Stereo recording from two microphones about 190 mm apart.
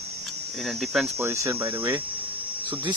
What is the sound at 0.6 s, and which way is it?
Speech, centre (ahead or behind).